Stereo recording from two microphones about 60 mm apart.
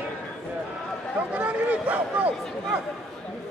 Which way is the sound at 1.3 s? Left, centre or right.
Right.